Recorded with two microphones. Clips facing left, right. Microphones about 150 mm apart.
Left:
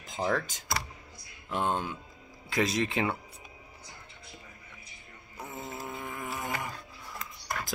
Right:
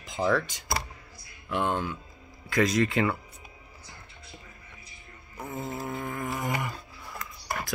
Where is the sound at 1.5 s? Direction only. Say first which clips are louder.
Right 2 dB; 30° left (ahead or behind).